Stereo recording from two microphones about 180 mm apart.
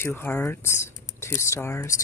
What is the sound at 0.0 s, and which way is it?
Speech, 15° left (ahead or behind).